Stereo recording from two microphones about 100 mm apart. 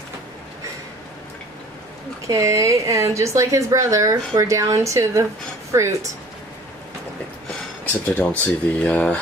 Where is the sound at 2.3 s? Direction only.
30° right (ahead or behind).